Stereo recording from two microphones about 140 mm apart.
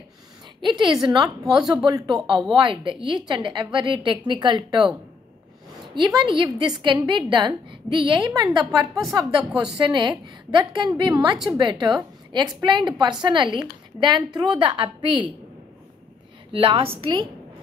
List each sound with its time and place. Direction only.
0.6 s a woman's voice: 35° right (ahead or behind)
5.9 s a woman's voice: 35° right (ahead or behind)
16.5 s a woman's voice: 40° right (ahead or behind)